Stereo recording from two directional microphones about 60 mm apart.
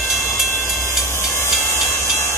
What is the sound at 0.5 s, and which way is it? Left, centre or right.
Train, left.